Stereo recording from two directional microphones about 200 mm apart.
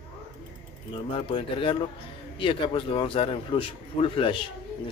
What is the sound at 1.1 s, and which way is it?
A man's voice, 25° left (ahead or behind).